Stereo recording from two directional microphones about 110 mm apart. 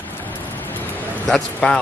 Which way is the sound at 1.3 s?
5° left (ahead or behind).